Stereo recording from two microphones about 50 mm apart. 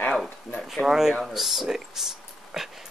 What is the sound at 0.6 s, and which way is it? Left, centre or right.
Speech, centre.